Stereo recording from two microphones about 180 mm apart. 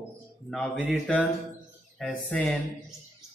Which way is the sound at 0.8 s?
5° left (ahead or behind).